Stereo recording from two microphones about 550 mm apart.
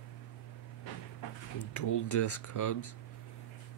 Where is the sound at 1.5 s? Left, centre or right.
Left.